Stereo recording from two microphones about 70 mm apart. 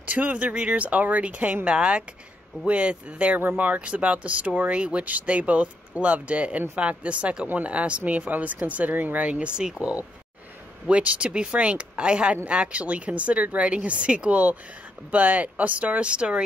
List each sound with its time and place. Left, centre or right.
0.0 s speech: right